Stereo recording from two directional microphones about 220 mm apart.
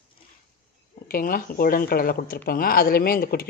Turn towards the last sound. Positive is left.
turn(degrees=45)  # may be behind; listen again after turning